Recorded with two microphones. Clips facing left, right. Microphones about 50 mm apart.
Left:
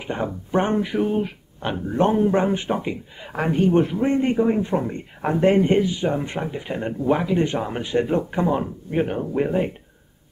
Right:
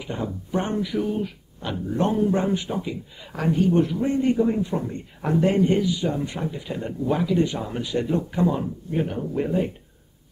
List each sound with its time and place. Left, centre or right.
0.0 s a man's voice: left